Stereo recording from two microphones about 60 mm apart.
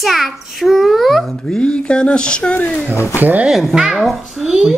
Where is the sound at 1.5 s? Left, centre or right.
Centre.